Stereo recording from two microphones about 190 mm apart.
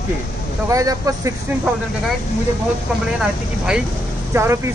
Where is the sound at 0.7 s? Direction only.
20° right (ahead or behind).